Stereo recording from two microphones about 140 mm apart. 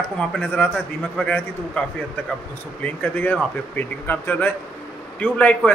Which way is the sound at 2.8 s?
10° left (ahead or behind).